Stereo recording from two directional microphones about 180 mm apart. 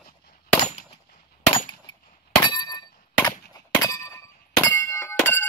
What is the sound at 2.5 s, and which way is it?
Clang, 20° left (ahead or behind).